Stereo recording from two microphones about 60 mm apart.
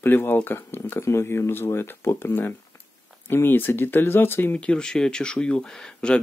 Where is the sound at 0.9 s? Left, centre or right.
Left.